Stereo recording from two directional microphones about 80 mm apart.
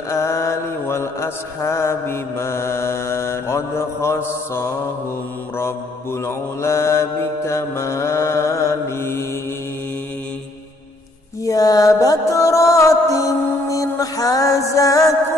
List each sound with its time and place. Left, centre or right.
0.1 s mantra: left
6.2 s mantra: left
11.4 s music: left